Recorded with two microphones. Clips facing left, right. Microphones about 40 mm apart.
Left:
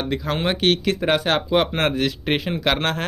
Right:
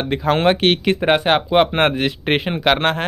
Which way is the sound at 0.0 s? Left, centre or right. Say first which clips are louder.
Right 7 dB; right.